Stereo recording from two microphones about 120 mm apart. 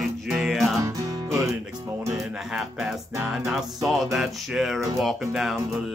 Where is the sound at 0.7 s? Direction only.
25° right (ahead or behind).